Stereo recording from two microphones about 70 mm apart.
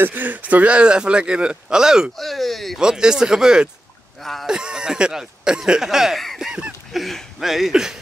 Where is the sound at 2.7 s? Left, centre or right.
Centre.